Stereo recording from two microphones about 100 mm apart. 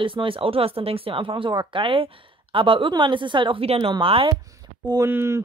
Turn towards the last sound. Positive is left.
turn(degrees=-25)  # may be behind; listen again after turning